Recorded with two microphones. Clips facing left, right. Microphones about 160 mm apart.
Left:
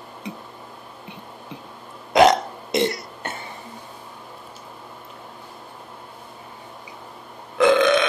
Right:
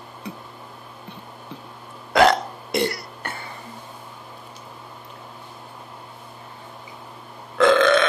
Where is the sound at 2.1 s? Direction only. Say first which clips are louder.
Left 2 dB; 20° left (ahead or behind).